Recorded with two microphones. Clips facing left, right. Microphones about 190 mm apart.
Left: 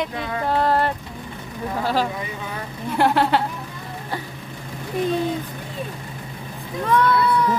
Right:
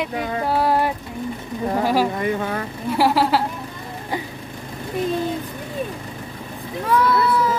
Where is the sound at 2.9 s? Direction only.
5° right (ahead or behind).